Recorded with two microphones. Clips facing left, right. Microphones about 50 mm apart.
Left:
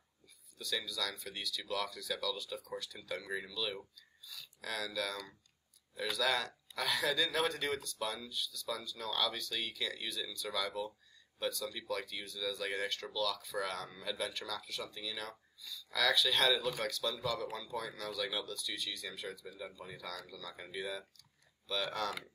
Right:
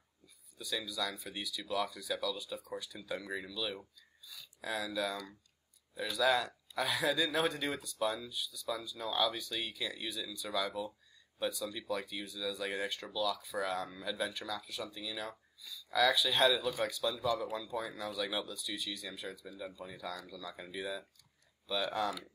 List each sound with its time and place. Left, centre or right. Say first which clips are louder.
0.6 s speech: right 1 dB; centre
20.5 s speech: left 2 dB; centre
21.6 s speech: right 3 dB; centre